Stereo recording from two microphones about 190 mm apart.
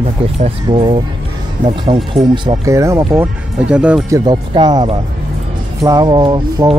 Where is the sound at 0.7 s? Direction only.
25° right (ahead or behind).